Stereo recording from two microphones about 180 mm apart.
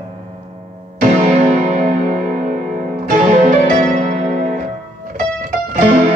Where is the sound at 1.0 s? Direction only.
45° right (ahead or behind).